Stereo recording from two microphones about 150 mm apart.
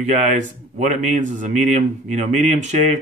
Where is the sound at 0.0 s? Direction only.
55° right (ahead or behind).